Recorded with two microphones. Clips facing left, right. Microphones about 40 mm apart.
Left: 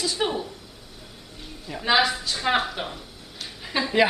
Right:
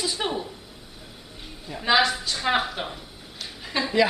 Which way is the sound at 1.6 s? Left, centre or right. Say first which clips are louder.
Even; centre.